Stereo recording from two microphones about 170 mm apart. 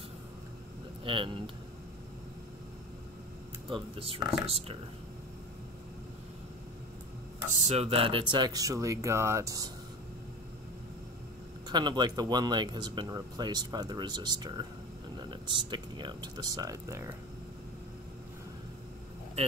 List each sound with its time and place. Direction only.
1.0 s speech: 30° right (ahead or behind)
3.7 s speech: 35° right (ahead or behind)
7.6 s speech: 35° right (ahead or behind); by 9.7 s 20° right (ahead or behind)
11.7 s speech: 25° right (ahead or behind)